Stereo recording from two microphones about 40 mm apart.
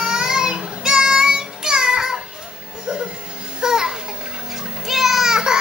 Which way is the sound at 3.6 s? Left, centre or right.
Centre.